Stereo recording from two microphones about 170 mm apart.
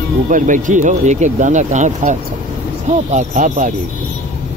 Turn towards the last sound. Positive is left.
turn(degrees=-50)  # may be behind; listen again after turning